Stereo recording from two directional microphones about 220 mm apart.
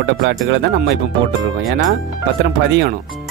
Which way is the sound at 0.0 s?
50° right (ahead or behind).